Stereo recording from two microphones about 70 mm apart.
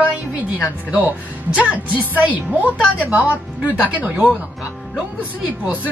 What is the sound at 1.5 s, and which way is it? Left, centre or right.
A woman's voice, right.